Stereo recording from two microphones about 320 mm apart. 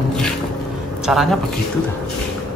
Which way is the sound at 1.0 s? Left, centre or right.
Centre.